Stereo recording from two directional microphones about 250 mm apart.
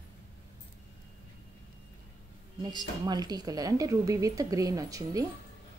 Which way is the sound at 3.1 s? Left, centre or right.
Centre.